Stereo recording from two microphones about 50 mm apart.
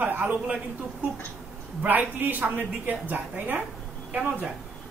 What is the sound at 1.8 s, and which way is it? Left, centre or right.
Speech, right.